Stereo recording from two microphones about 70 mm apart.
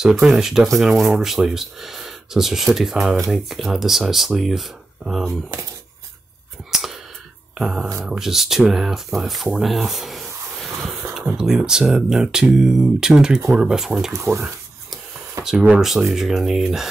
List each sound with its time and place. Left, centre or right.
0.0 s speech: centre
6.7 s whispering: centre
7.5 s speech: centre
14.1 s speech: right
15.4 s a sound: right
15.8 s speech: centre